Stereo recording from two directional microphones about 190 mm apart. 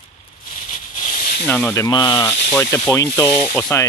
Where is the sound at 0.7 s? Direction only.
45° left (ahead or behind).